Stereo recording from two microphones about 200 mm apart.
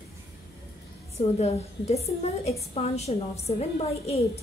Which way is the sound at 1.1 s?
30° left (ahead or behind).